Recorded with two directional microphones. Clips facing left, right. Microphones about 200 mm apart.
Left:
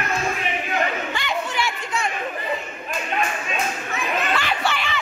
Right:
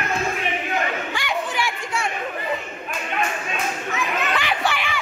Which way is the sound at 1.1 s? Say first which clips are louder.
Even; 15° right (ahead or behind).